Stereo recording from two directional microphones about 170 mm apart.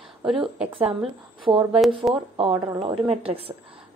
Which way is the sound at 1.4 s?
25° right (ahead or behind).